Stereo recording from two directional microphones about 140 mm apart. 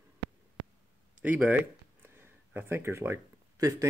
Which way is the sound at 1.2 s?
10° right (ahead or behind).